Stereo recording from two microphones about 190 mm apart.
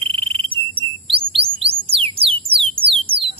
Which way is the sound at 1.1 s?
30° right (ahead or behind).